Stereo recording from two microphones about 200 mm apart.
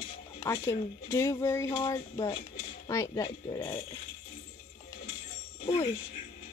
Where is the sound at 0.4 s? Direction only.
15° left (ahead or behind).